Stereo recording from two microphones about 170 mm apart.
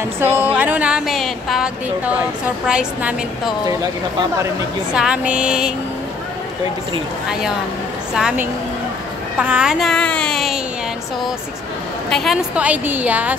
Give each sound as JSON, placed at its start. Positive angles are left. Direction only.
{"t": 0.2, "sound": "a woman's voice", "side_deg": -10}
{"t": 4.9, "sound": "speech", "side_deg": -5}
{"t": 7.2, "sound": "speech", "side_deg": -5}
{"t": 12.1, "sound": "a woman's voice", "side_deg": 0}